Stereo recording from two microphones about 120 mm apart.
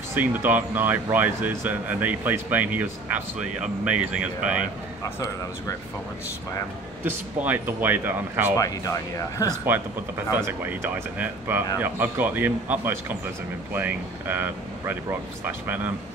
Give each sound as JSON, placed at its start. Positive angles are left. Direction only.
{"t": 0.1, "sound": "speech", "side_deg": -15}
{"t": 7.1, "sound": "speech", "side_deg": -15}
{"t": 8.5, "sound": "speech", "side_deg": 30}
{"t": 9.7, "sound": "speech", "side_deg": -15}